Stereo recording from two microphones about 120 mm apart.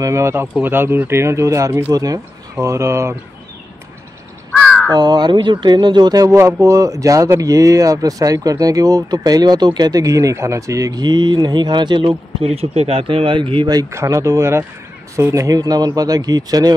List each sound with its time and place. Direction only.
0.0 s speech: 25° right (ahead or behind)
4.5 s crow: 10° left (ahead or behind)
4.9 s speech: 35° right (ahead or behind)
12.4 s speech: 60° right (ahead or behind); by 16.7 s 30° right (ahead or behind)